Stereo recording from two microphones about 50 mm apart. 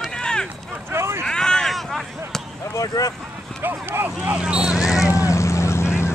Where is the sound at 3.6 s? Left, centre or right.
Right.